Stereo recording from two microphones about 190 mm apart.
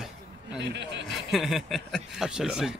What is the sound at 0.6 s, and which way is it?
Speech, 65° right (ahead or behind).